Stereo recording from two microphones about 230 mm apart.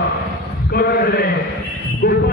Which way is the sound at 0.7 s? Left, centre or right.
Left.